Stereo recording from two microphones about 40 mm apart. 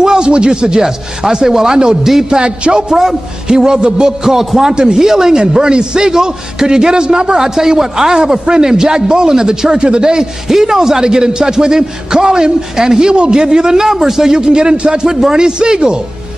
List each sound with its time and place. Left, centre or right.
0.0 s a man's voice: centre
5.4 s a man's voice: right